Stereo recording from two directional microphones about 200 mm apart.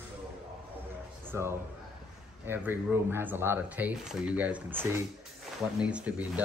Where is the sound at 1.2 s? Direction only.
15° right (ahead or behind).